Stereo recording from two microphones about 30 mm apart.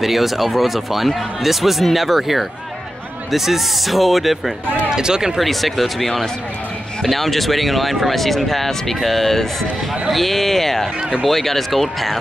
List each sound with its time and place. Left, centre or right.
0.0 s speech: centre
4.9 s speech: right
5.4 s speech: centre